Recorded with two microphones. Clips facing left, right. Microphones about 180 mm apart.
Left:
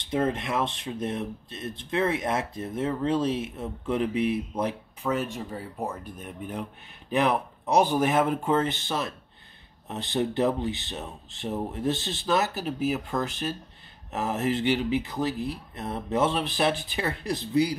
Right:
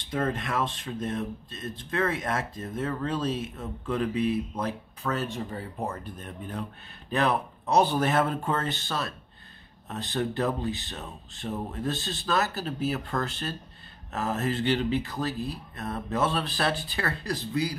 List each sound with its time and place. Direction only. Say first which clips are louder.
0.1 s speech: left 2 dB; 20° left (ahead or behind)